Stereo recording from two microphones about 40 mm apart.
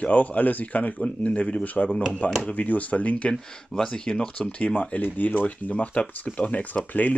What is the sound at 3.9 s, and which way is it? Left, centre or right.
Speech, centre.